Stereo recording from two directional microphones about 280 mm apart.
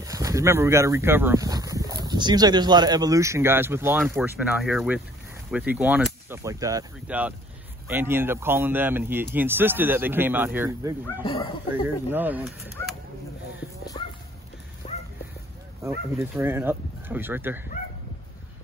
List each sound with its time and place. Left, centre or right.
0.0 s speech: centre
11.2 s speech: centre
12.1 s speech: centre
14.0 s dog: centre
14.8 s a sound: left
15.8 s speech: centre